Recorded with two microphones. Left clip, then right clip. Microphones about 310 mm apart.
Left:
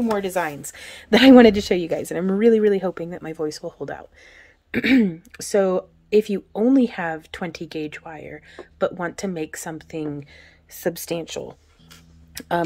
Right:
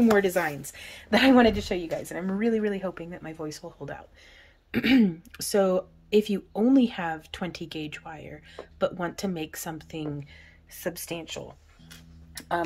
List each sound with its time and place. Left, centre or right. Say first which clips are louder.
0.0 s a woman's voice: even; centre; by 12.6 s left